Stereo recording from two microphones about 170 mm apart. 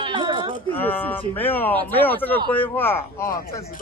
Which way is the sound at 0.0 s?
30° right (ahead or behind).